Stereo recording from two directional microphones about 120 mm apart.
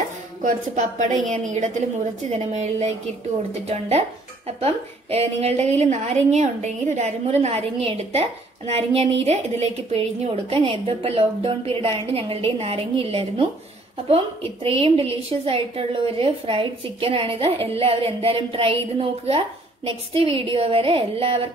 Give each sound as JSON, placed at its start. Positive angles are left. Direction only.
{"t": 0.4, "sound": "a woman's voice", "side_deg": -90}
{"t": 2.3, "sound": "a woman's voice", "side_deg": -65}